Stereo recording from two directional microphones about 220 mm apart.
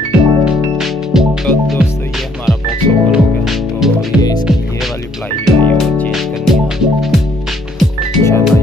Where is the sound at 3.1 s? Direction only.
Centre (ahead or behind).